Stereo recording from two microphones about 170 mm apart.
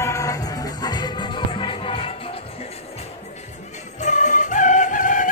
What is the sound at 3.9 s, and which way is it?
Music, 45° left (ahead or behind).